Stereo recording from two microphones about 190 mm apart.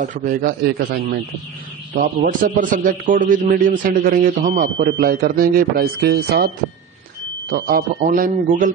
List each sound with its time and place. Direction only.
0.1 s a man's voice: 45° right (ahead or behind)
2.0 s a man's voice: 45° right (ahead or behind)